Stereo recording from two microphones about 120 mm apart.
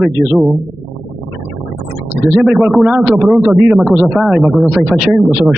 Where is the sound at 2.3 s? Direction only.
Centre (ahead or behind).